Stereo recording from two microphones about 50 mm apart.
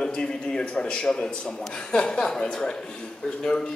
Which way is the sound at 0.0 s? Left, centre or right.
Centre.